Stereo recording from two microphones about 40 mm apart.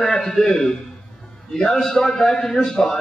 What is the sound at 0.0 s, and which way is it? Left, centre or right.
A man's voice, centre.